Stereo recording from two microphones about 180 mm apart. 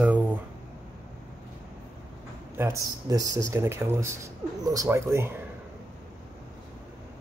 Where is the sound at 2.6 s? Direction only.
15° right (ahead or behind).